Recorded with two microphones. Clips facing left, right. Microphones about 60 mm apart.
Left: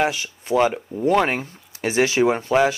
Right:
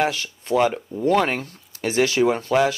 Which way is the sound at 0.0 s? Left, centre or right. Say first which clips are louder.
Left 1 dB; centre.